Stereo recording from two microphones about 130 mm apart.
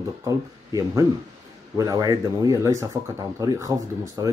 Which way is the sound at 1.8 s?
30° right (ahead or behind).